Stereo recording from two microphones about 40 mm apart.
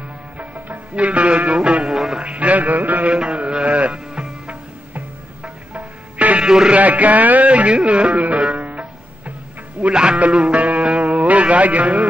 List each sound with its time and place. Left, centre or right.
0.9 s music: right
2.0 s music: centre
2.2 s music: right
3.2 s music: right
5.4 s music: right
6.4 s music: centre
6.7 s music: right
9.8 s speech: right